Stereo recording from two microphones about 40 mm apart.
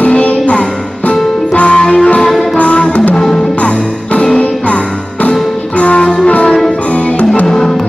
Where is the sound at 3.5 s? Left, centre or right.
Left.